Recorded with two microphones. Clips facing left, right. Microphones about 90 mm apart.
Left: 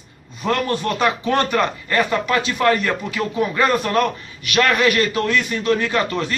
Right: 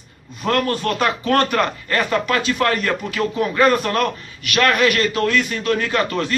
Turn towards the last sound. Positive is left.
turn(degrees=20)  # may be behind; listen again after turning